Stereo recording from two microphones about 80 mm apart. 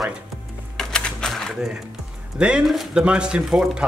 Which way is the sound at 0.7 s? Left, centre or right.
Centre.